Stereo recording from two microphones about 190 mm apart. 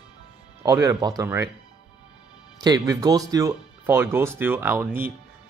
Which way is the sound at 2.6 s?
20° right (ahead or behind).